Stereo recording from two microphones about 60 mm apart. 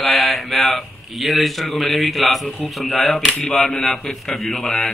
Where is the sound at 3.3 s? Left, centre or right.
Centre.